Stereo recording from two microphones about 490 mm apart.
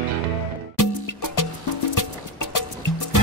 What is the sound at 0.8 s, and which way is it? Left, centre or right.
Music, left.